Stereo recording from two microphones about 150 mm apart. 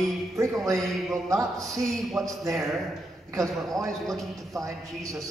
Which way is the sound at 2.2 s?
20° right (ahead or behind).